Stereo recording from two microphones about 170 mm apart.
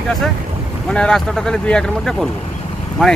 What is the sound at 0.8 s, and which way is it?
Speech, 5° left (ahead or behind).